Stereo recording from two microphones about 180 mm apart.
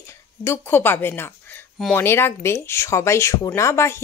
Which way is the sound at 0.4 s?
10° left (ahead or behind).